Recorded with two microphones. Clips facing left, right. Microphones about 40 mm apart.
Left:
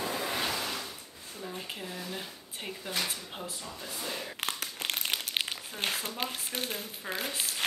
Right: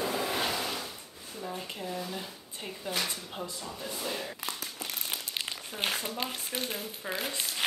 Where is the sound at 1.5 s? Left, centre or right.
Centre.